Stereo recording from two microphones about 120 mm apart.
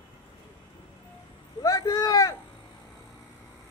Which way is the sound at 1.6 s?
30° left (ahead or behind).